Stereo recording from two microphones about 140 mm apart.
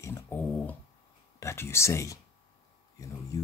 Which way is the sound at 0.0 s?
15° left (ahead or behind).